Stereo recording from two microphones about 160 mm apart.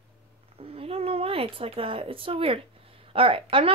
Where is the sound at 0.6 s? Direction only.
35° right (ahead or behind).